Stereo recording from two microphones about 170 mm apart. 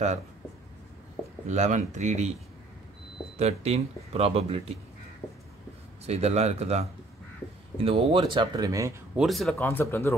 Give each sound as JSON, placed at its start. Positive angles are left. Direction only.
{"t": 1.5, "sound": "speech", "side_deg": -45}
{"t": 3.3, "sound": "speech", "side_deg": -40}
{"t": 6.0, "sound": "speech", "side_deg": -40}
{"t": 9.1, "sound": "speech", "side_deg": 0}
{"t": 9.6, "sound": "speech", "side_deg": 15}